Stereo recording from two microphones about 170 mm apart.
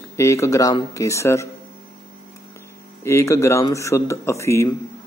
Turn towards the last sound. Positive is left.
turn(degrees=15)  # may be behind; listen again after turning